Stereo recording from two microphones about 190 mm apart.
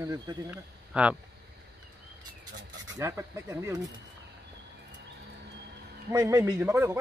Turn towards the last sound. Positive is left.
turn(degrees=-10)  # may be behind; listen again after turning